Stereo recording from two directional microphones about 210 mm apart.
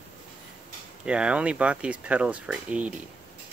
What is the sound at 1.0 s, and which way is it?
Speech, 5° right (ahead or behind).